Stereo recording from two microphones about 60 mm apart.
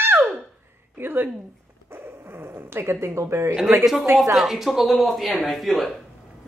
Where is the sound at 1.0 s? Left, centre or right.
Right.